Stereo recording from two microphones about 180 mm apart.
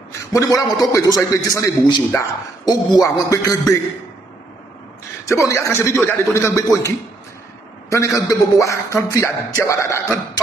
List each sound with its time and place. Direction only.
0.3 s a man's voice: 20° left (ahead or behind)
5.3 s a man's voice: 15° left (ahead or behind)
7.9 s a man's voice: 15° left (ahead or behind)